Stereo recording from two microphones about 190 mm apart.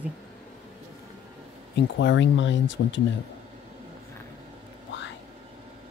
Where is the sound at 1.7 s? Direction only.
70° left (ahead or behind).